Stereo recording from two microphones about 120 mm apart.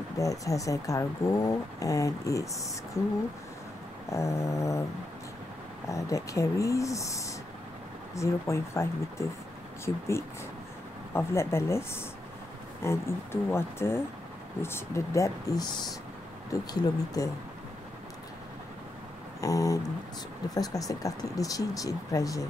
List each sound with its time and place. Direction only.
0.2 s speech: 30° left (ahead or behind)
5.9 s speech: 25° left (ahead or behind)
17.2 s speech: 30° left (ahead or behind)
19.4 s speech: 30° left (ahead or behind)